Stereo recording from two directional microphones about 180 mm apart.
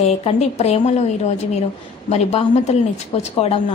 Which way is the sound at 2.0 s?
35° left (ahead or behind).